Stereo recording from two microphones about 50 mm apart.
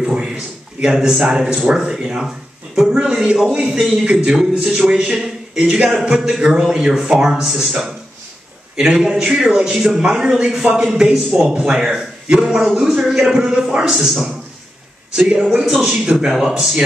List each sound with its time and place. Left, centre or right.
0.0 s a man's voice: centre
4.4 s a man's voice: centre
4.8 s a man's voice: centre
5.6 s a man's voice: right
15.1 s a man's voice: centre